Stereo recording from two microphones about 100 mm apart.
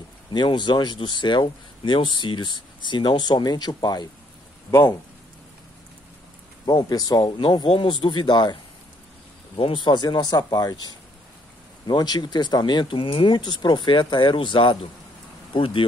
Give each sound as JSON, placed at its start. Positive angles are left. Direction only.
{"t": 0.3, "sound": "speech", "side_deg": 50}
{"t": 6.6, "sound": "speech", "side_deg": 45}
{"t": 9.6, "sound": "speech", "side_deg": 60}